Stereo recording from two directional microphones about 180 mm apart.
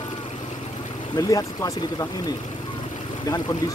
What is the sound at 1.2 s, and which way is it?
Speech, 20° left (ahead or behind).